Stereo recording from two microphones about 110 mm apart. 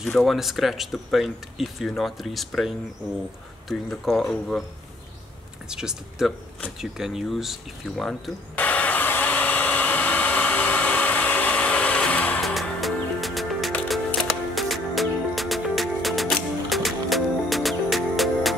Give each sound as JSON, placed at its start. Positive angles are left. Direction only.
{"t": 0.0, "sound": "speech", "side_deg": 0}
{"t": 5.7, "sound": "speech", "side_deg": -5}
{"t": 8.0, "sound": "a sound", "side_deg": 10}
{"t": 12.4, "sound": "music", "side_deg": 0}